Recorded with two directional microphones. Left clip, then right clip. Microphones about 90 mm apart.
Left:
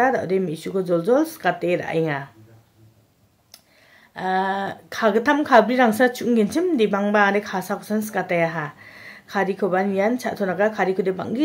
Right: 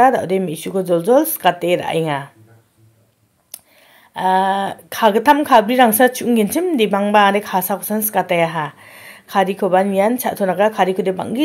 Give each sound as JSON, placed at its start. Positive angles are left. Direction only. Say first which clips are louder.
{"t": 0.0, "sound": "a woman's voice", "louder": "right 6 dB", "side_deg": -30}
{"t": 4.1, "sound": "a woman's voice", "louder": "right 7 dB", "side_deg": -30}